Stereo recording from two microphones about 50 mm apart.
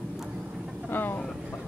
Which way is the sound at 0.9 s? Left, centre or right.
Left.